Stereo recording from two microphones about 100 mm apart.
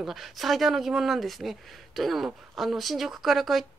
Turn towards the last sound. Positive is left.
turn(degrees=0)  # may be behind; listen again after turning